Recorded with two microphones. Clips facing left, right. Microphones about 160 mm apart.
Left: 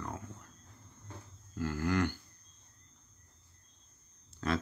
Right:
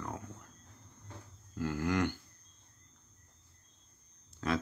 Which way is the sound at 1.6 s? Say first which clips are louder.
Even; 15° right (ahead or behind).